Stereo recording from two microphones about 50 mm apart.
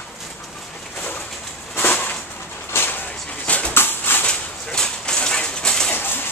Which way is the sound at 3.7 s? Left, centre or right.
Left.